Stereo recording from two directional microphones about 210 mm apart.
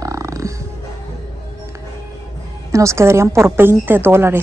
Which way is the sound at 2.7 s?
15° right (ahead or behind).